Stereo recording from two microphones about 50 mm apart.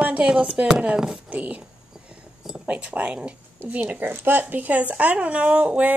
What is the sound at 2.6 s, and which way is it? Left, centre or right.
Speech, right.